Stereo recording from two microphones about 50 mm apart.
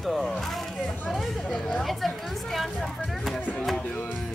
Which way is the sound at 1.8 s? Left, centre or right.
Centre.